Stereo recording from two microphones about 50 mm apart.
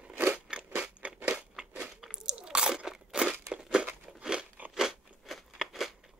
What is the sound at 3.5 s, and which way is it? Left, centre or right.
Crumpling, centre.